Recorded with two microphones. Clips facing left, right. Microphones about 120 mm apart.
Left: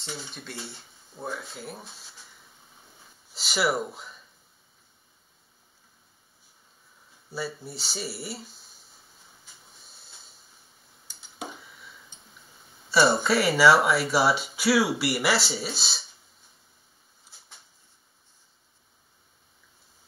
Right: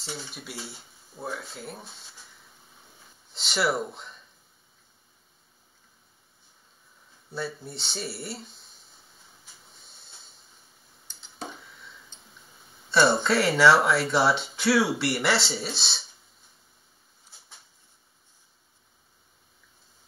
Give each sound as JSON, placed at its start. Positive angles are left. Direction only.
{"t": 0.0, "sound": "speech", "side_deg": 0}
{"t": 3.3, "sound": "speech", "side_deg": 0}
{"t": 7.2, "sound": "speech", "side_deg": 0}
{"t": 9.8, "sound": "hiss", "side_deg": 0}
{"t": 11.4, "sound": "a sound", "side_deg": 5}
{"t": 12.9, "sound": "speech", "side_deg": 5}